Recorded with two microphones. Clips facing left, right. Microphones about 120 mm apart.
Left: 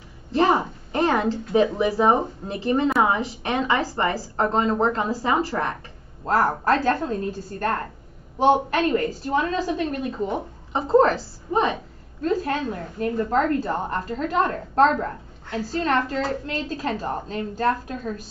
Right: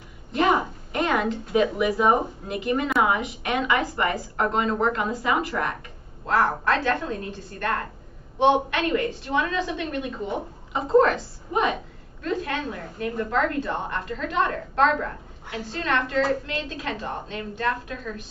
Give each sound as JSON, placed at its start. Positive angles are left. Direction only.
{"t": 0.3, "sound": "a woman's voice", "side_deg": 35}